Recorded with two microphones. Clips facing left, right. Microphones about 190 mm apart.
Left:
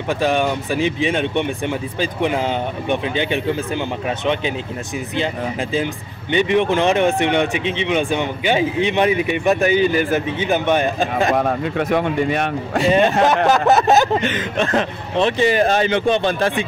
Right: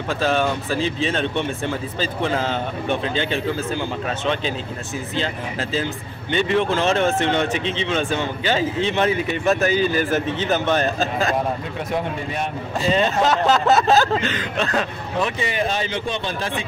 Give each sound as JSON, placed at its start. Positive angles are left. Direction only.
{"t": 0.2, "sound": "speech", "side_deg": 15}
{"t": 6.3, "sound": "speech", "side_deg": 15}
{"t": 11.9, "sound": "speech", "side_deg": 70}
{"t": 12.9, "sound": "speech", "side_deg": 15}
{"t": 15.6, "sound": "speech", "side_deg": 55}